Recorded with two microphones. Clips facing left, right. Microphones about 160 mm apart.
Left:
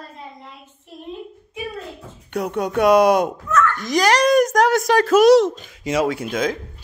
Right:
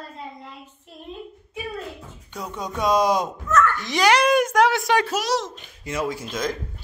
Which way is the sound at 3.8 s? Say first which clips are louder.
Left 2 dB; 40° left (ahead or behind).